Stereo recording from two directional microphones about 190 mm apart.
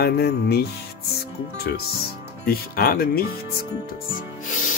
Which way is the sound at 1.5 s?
55° left (ahead or behind).